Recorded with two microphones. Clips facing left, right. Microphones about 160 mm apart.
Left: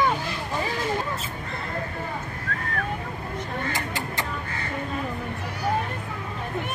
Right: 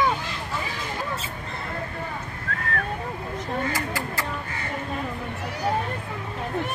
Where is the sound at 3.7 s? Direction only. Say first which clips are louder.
Right 1 dB; 20° left (ahead or behind).